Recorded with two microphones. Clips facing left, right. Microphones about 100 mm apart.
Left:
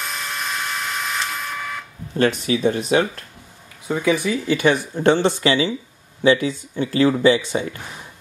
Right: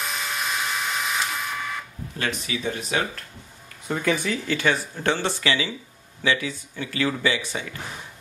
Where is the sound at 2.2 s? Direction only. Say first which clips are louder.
Left 10 dB; 40° left (ahead or behind).